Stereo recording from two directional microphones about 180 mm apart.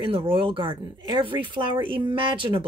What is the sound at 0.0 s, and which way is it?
Speech, 30° right (ahead or behind).